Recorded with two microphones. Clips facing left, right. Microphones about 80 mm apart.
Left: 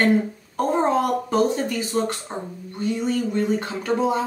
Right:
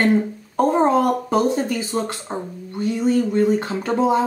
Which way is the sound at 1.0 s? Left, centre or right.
Right.